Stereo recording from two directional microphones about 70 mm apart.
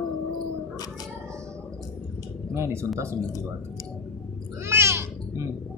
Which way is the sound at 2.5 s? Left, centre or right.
Right.